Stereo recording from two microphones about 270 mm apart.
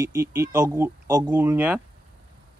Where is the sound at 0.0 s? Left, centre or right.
Centre.